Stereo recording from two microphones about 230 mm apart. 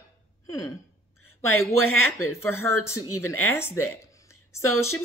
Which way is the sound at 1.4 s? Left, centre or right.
Left.